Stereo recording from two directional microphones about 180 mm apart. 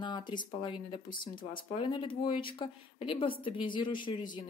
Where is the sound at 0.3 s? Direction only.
25° left (ahead or behind).